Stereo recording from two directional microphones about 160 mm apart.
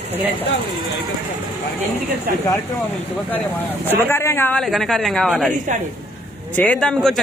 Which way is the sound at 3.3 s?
10° left (ahead or behind).